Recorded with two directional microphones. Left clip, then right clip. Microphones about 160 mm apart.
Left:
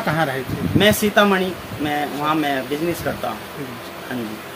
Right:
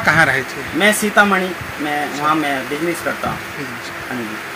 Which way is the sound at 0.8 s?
30° left (ahead or behind).